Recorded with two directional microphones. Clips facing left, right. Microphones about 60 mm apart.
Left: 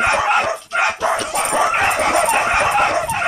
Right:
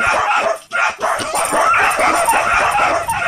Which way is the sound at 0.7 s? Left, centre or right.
Centre.